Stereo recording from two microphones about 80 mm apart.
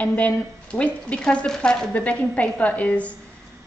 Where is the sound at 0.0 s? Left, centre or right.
Centre.